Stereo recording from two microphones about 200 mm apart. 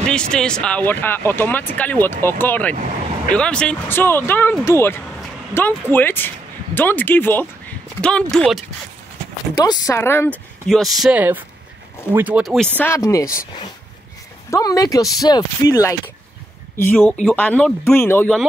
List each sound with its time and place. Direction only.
0.0 s speech: 5° left (ahead or behind)
9.6 s speech: 15° left (ahead or behind)
14.5 s speech: 20° left (ahead or behind)